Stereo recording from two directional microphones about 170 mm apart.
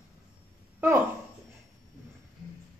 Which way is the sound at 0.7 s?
10° right (ahead or behind).